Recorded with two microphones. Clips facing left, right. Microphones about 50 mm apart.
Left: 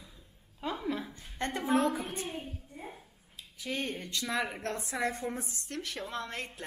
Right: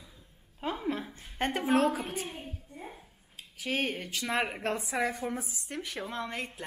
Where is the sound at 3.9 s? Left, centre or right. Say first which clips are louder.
Right 2 dB; right.